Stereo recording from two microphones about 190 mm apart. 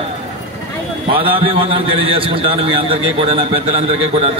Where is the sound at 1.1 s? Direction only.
30° right (ahead or behind).